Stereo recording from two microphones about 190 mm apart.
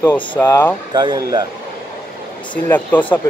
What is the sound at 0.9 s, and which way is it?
Speech, 25° right (ahead or behind).